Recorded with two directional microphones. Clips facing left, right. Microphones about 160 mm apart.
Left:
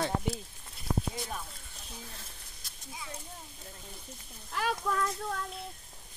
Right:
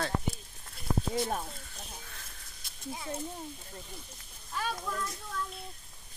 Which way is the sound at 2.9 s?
50° right (ahead or behind).